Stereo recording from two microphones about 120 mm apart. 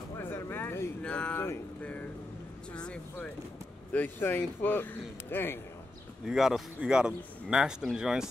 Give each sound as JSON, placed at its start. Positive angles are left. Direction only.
{"t": 0.2, "sound": "a sound", "side_deg": 15}
{"t": 1.0, "sound": "a man's voice", "side_deg": 10}
{"t": 6.2, "sound": "speech", "side_deg": -5}